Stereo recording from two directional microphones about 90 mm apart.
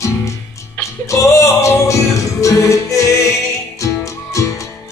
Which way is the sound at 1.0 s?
35° left (ahead or behind).